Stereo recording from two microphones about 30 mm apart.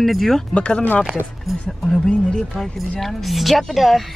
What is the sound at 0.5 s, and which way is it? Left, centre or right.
Speech, left.